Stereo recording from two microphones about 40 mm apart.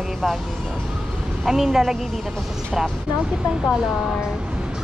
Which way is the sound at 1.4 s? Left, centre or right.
Centre.